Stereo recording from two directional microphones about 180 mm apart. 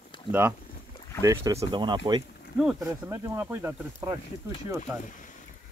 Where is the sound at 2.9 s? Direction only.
15° right (ahead or behind).